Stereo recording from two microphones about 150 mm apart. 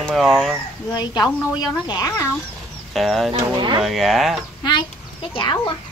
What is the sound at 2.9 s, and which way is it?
Speech, centre (ahead or behind).